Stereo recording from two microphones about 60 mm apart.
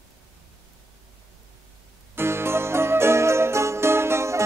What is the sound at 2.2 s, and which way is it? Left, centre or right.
Music, right.